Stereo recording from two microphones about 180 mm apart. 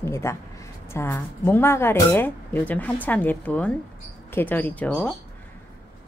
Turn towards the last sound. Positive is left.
turn(degrees=5)  # may be behind; listen again after turning